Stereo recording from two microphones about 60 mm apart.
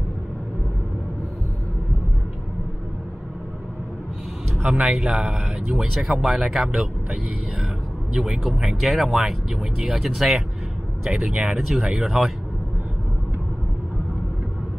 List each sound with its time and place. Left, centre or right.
4.7 s speech: centre
5.7 s speech: centre